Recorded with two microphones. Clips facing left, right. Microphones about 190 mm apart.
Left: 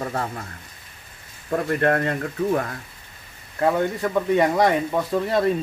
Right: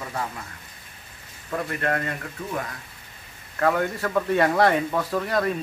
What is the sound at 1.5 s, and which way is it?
Speech, 40° left (ahead or behind).